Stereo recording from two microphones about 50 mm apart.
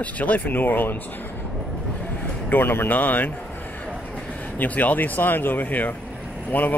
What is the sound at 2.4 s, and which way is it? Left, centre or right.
Speech, left.